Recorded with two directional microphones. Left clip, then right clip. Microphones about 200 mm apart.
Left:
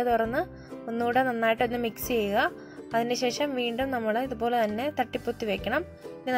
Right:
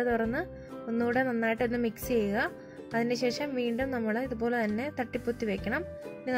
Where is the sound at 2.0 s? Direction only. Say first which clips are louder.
Left 4 dB; 50° left (ahead or behind).